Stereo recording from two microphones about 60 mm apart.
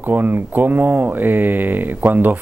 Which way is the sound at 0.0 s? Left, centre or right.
Right.